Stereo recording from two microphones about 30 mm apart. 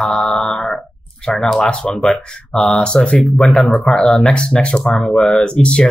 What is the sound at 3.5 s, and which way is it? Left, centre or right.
Speech, left.